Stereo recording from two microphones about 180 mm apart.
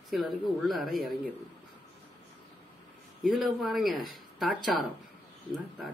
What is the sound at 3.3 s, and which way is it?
Speech, centre (ahead or behind).